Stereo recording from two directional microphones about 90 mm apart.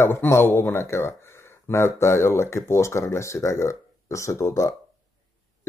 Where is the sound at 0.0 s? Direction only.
25° left (ahead or behind).